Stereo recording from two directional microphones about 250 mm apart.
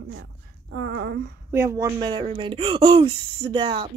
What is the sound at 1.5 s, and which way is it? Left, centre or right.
Speech, centre.